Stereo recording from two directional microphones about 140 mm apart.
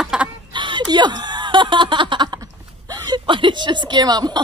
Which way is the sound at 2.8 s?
30° right (ahead or behind).